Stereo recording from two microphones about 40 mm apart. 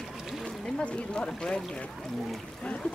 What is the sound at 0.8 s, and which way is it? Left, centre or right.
Speech, left.